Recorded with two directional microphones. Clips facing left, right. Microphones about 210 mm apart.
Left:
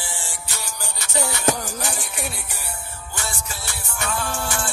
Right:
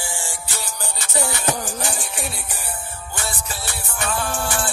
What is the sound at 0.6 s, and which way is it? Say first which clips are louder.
Music: right 2 dB; 50° right (ahead or behind).